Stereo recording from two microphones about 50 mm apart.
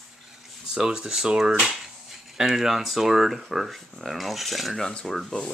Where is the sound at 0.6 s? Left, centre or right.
Centre.